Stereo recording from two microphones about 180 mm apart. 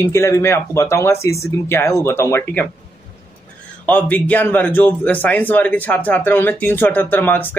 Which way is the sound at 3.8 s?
10° left (ahead or behind).